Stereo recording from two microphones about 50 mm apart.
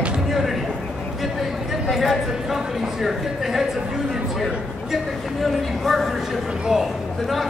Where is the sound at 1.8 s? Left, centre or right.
Centre.